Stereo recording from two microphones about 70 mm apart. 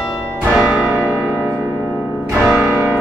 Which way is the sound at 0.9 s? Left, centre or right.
Right.